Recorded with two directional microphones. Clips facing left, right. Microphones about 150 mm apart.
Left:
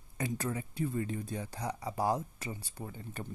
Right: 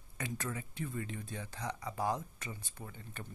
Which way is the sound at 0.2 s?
30° left (ahead or behind).